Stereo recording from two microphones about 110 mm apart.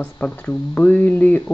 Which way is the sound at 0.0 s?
15° left (ahead or behind).